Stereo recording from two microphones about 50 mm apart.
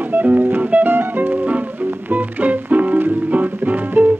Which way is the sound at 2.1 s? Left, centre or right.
Right.